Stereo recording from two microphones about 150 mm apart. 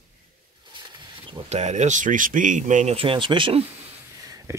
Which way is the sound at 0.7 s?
30° right (ahead or behind).